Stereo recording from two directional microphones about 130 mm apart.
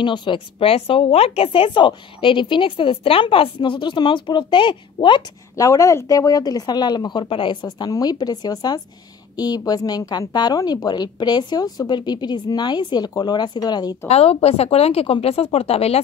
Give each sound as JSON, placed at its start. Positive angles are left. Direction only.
{"t": 0.0, "sound": "a woman's voice", "side_deg": 35}
{"t": 5.6, "sound": "a woman's voice", "side_deg": 25}
{"t": 14.0, "sound": "speech", "side_deg": 50}